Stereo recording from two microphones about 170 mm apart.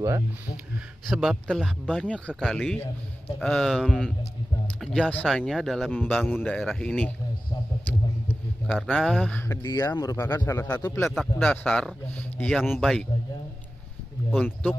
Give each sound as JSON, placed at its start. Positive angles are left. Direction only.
{"t": 1.0, "sound": "a man's voice", "side_deg": -5}
{"t": 8.7, "sound": "a man's voice", "side_deg": 0}
{"t": 9.6, "sound": "a man's voice", "side_deg": 20}
{"t": 11.1, "sound": "a man's voice", "side_deg": 0}
{"t": 14.4, "sound": "a man's voice", "side_deg": 10}